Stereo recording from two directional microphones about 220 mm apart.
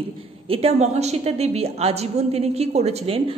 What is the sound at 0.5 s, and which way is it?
A woman's voice, 25° right (ahead or behind).